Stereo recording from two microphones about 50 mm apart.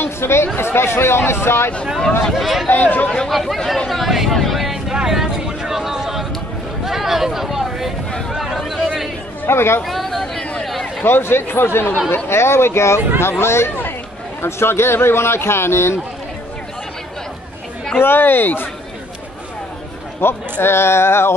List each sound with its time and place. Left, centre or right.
0.0 s chatter: left
0.6 s a man's voice: left
2.3 s speech: centre
2.7 s speech: left
3.3 s speech: centre
4.4 s a sound: centre
9.5 s a man's voice: left
9.8 s chatter: centre
10.6 s a sound: centre
11.1 s a man's voice: left
18.0 s speech: left
20.2 s a man's voice: left